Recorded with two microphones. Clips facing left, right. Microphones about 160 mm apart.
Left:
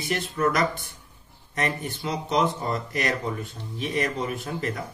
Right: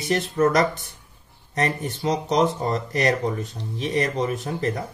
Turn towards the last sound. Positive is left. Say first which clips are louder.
# right 4 dB
turn(degrees=-35)  # may be behind; listen again after turning